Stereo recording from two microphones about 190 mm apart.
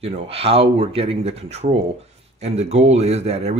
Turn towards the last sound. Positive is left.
turn(degrees=-35)  # may be behind; listen again after turning